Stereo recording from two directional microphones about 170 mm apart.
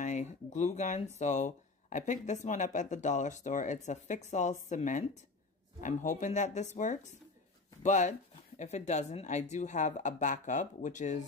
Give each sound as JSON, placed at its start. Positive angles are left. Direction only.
{"t": 0.0, "sound": "speech", "side_deg": 45}